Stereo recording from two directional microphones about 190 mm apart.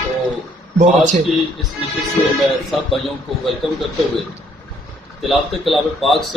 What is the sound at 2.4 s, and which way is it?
Speech, centre (ahead or behind).